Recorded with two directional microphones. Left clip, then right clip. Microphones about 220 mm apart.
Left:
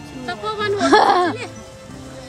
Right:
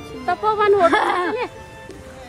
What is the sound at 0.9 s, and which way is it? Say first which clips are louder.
Speech: left 5 dB; 15° left (ahead or behind).